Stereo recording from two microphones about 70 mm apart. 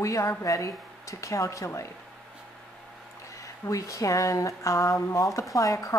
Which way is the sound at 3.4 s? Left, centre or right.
Left.